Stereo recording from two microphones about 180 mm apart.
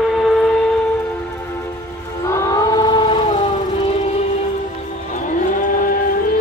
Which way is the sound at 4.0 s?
35° left (ahead or behind).